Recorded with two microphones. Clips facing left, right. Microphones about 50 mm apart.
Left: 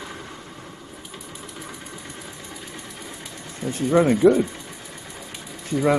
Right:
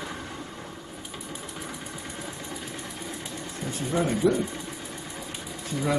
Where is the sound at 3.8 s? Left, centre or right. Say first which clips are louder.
Left 8 dB; left.